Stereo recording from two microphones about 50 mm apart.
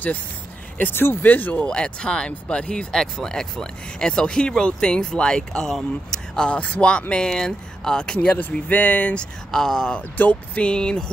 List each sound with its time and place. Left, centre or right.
0.7 s speech: left
1.6 s speech: centre
2.9 s speech: centre; by 9.2 s left
9.5 s speech: centre
10.1 s speech: left
10.6 s speech: centre